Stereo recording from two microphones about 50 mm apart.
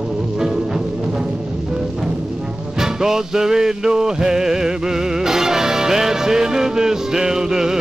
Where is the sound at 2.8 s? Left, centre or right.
Centre.